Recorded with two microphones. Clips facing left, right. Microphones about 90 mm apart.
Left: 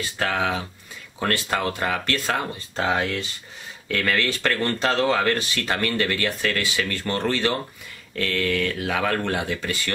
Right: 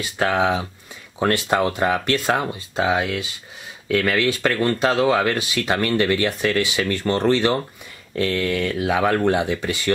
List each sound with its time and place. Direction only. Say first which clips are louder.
0.2 s speech: right 5 dB; 20° right (ahead or behind)